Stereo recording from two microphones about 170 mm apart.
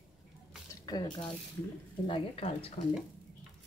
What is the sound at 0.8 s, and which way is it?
A woman's voice, 25° left (ahead or behind).